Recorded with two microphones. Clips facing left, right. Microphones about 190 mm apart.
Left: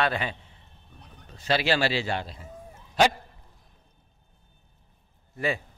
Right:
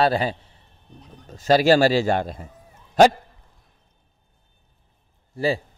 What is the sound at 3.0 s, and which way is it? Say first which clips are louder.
Dog: right 8 dB; 50° right (ahead or behind).